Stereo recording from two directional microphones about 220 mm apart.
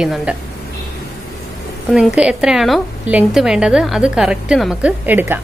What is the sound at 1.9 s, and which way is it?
A woman's voice, 5° right (ahead or behind).